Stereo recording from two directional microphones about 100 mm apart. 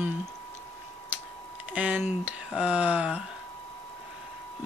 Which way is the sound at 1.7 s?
15° right (ahead or behind).